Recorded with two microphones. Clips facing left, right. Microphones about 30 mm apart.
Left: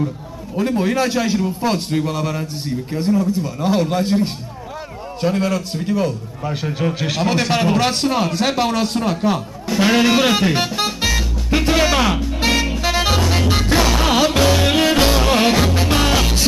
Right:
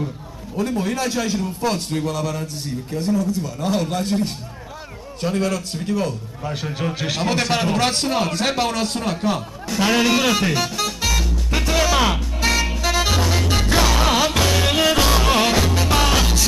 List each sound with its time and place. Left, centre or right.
0.6 s a man's voice: centre
10.8 s music: left
11.6 s a man's voice: left
12.0 s a man's voice: centre
12.4 s music: centre
15.9 s music: centre